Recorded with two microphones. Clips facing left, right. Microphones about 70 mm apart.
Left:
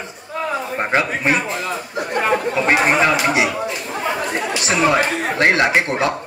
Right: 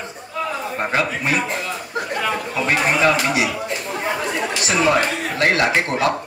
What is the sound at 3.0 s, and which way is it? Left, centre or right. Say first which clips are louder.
Speech: left 1 dB; left.